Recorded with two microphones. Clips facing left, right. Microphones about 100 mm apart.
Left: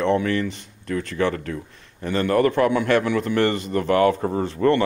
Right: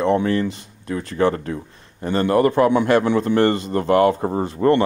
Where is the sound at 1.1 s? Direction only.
35° right (ahead or behind).